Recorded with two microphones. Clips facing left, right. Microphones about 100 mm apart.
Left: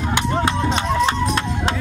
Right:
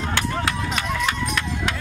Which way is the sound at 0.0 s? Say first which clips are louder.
Left 4 dB; 20° left (ahead or behind).